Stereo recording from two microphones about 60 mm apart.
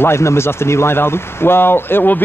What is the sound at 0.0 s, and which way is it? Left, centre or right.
Speech, left.